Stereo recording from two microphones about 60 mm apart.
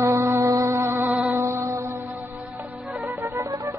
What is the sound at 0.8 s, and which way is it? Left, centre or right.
Music, right.